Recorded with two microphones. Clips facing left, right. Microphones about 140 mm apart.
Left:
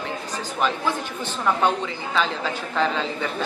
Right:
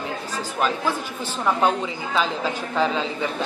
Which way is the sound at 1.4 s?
10° right (ahead or behind).